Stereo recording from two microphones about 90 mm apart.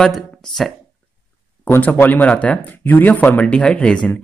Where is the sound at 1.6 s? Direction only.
20° left (ahead or behind).